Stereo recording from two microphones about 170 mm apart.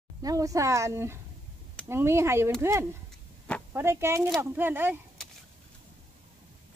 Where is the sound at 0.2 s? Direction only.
20° right (ahead or behind).